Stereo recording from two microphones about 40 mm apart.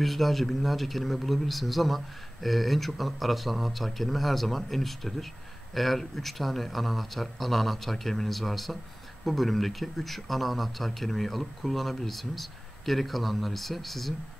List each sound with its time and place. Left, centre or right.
0.0 s a man's voice: centre